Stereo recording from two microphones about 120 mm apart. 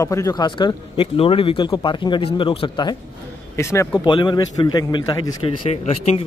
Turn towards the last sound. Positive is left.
turn(degrees=60)  # may be behind; listen again after turning